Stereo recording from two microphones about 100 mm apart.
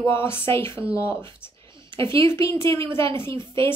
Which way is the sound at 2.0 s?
25° left (ahead or behind).